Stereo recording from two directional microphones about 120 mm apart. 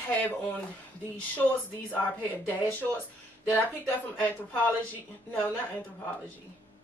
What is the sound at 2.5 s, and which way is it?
Speech, 15° left (ahead or behind).